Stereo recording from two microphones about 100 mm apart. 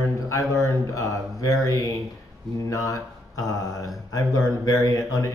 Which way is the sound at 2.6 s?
35° left (ahead or behind).